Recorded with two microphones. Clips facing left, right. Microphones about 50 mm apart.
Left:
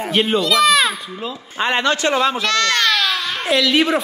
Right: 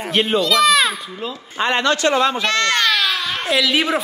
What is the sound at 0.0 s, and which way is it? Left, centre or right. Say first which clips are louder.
Speech: even; centre.